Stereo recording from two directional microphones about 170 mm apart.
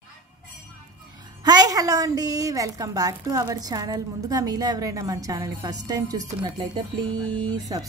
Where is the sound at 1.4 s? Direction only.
25° right (ahead or behind).